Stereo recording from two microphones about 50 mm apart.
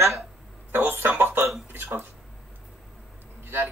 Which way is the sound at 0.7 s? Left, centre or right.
Right.